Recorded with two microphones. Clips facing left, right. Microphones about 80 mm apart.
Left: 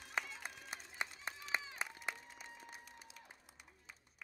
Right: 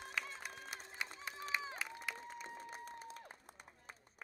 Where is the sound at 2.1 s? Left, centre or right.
Right.